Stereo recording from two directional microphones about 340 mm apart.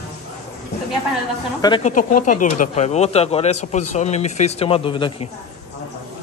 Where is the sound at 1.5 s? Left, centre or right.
Centre.